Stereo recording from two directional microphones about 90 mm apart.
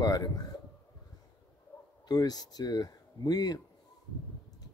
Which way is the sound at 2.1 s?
45° left (ahead or behind).